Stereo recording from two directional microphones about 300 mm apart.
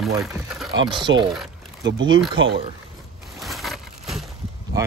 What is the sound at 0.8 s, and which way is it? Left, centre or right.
Speech, centre.